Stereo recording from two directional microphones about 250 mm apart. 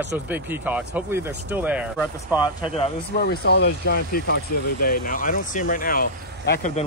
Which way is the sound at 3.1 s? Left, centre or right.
Left.